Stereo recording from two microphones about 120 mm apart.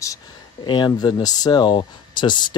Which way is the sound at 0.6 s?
40° left (ahead or behind).